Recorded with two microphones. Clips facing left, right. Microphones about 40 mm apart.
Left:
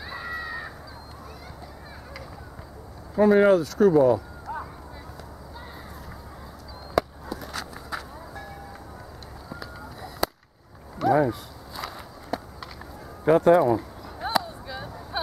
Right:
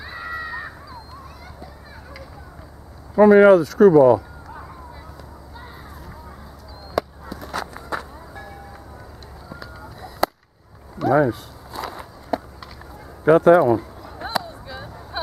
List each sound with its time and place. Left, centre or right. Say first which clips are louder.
0.0 s run: right 3 dB; centre
3.2 s speech: right 7 dB; centre
7.0 s a sound: even; centre
7.6 s music: right 5 dB; centre
9.5 s fowl: right 1 dB; centre
11.1 s walk: right 4 dB; centre
13.2 s a sound: right 5 dB; centre